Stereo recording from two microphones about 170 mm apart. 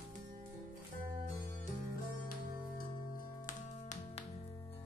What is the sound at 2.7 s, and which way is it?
Music, 55° left (ahead or behind).